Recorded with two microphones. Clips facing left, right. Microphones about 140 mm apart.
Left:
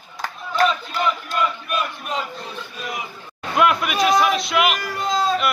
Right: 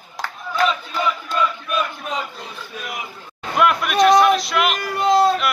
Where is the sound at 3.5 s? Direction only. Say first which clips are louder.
Right 1 dB; centre (ahead or behind).